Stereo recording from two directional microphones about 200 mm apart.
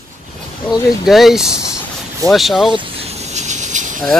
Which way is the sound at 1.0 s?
Centre (ahead or behind).